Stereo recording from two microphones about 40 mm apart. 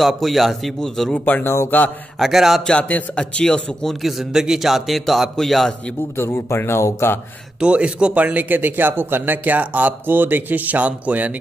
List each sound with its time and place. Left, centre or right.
0.0 s a man's voice: centre
1.2 s speech: left
2.1 s speech: centre
2.8 s a man's voice: left
4.0 s a man's voice: centre
6.1 s speech: left
7.6 s a man's voice: right
8.5 s speech: right